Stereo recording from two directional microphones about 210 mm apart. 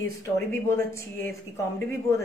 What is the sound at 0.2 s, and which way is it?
Speech, 10° left (ahead or behind).